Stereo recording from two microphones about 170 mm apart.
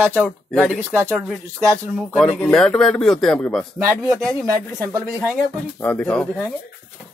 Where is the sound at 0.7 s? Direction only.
15° right (ahead or behind).